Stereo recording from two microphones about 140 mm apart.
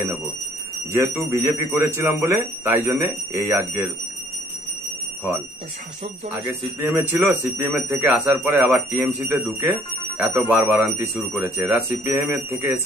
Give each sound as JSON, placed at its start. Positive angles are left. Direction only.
{"t": 0.9, "sound": "speech", "side_deg": -20}
{"t": 7.0, "sound": "speech", "side_deg": -15}